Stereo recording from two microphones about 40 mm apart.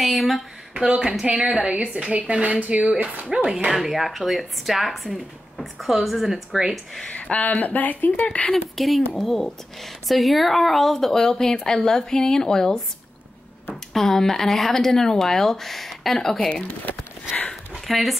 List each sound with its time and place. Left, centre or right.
0.0 s speech: centre
0.7 s a woman's voice: right
1.2 s a woman's voice: right
3.3 s speech: centre
3.7 s speech: centre
7.1 s speech: left
8.5 s speech: centre
13.9 s speech: centre
17.7 s a sound: centre